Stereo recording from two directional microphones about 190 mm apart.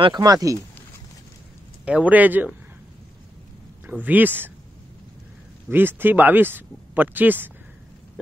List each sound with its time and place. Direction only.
0.0 s speech: 20° right (ahead or behind)
1.9 s speech: 5° right (ahead or behind)
3.8 s speech: 10° right (ahead or behind)
5.7 s speech: 10° right (ahead or behind)